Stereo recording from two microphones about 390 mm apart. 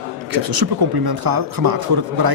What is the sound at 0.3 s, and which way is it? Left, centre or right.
Speech, right.